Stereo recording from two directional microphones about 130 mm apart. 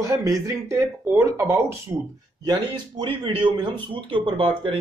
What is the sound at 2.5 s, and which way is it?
Speech, 35° right (ahead or behind).